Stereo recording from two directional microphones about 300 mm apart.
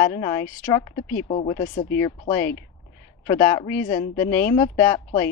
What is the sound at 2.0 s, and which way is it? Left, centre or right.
Speech, centre.